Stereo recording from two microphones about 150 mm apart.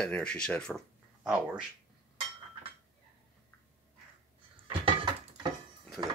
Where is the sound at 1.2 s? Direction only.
5° right (ahead or behind).